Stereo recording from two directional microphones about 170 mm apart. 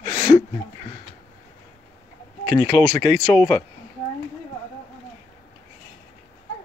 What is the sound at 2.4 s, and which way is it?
Speech, 55° right (ahead or behind).